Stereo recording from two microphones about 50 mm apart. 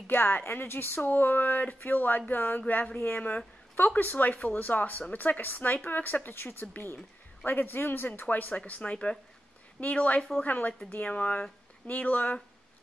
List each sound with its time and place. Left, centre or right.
0.0 s speech: left
2.6 s a woman's voice: left
8.9 s speech: centre